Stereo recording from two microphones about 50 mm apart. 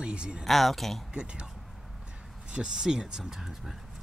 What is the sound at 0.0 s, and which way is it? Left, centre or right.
Speech, centre.